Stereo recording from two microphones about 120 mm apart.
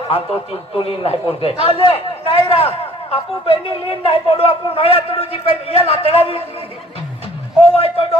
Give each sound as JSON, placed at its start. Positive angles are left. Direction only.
{"t": 0.1, "sound": "a man's voice", "side_deg": 50}
{"t": 7.6, "sound": "a man's voice", "side_deg": 50}